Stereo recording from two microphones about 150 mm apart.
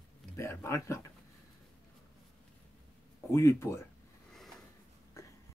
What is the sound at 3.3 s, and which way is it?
Speech, 20° left (ahead or behind).